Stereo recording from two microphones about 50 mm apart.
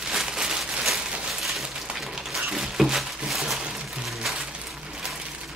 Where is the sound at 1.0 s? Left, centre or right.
Centre.